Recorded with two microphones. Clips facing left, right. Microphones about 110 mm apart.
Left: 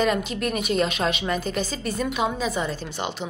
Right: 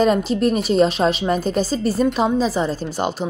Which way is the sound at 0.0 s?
35° right (ahead or behind).